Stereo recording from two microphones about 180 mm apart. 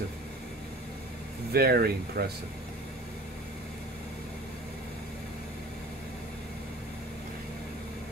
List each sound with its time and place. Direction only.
1.5 s speech: 60° right (ahead or behind)